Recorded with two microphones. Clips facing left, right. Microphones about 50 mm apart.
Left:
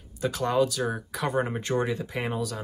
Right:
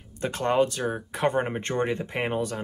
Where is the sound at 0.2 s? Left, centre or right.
Right.